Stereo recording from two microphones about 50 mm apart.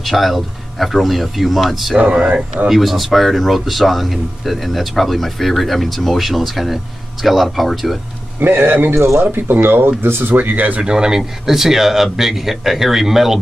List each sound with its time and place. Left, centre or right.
0.0 s speech: centre
2.1 s speech: centre
2.7 s speech: centre
8.4 s speech: right
8.9 s speech: right
9.2 s speech: right
10.8 s speech: centre